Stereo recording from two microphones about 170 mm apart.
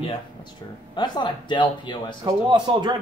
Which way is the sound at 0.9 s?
25° left (ahead or behind).